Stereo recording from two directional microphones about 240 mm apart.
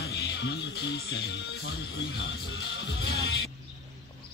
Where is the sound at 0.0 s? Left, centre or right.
Left.